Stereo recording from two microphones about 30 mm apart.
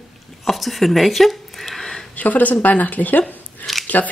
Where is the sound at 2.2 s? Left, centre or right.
Left.